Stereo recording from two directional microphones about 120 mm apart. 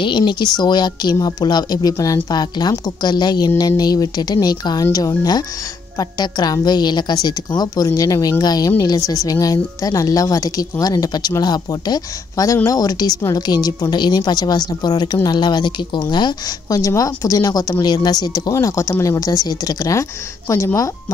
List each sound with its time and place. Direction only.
0.0 s a woman's voice: 40° left (ahead or behind); by 20.9 s 25° left (ahead or behind)